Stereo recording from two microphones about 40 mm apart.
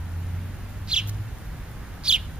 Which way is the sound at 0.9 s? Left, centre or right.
Right.